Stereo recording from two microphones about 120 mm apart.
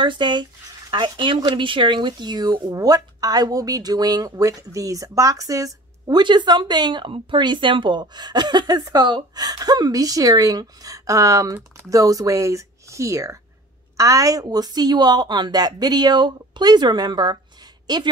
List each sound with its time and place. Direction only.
0.0 s speech: 40° right (ahead or behind)